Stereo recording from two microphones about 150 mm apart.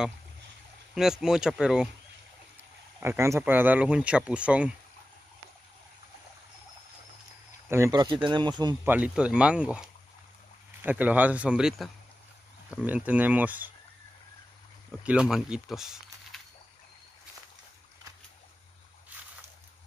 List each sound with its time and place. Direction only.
0.9 s speech: 5° right (ahead or behind)
3.0 s speech: 15° right (ahead or behind)
7.7 s speech: 20° right (ahead or behind)
8.8 s speech: 10° right (ahead or behind)
15.0 s speech: 5° right (ahead or behind)